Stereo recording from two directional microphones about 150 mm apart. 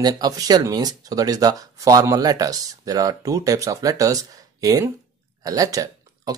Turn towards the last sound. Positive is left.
turn(degrees=-25)  # may be behind; listen again after turning